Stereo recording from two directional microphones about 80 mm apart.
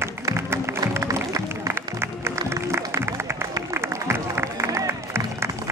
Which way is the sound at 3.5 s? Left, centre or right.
Right.